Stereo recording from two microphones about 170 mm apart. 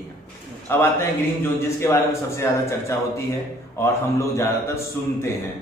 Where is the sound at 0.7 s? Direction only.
15° left (ahead or behind).